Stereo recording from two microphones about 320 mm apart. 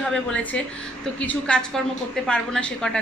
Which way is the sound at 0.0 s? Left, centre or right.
Centre.